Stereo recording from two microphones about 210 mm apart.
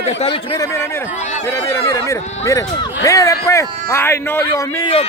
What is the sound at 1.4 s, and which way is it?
Speech, 10° left (ahead or behind).